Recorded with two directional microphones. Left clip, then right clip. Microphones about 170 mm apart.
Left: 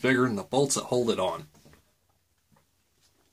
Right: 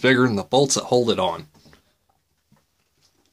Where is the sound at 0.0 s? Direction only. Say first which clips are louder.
Right 7 dB; 40° right (ahead or behind).